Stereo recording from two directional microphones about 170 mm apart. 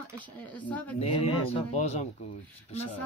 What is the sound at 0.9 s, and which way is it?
Speech, 35° left (ahead or behind).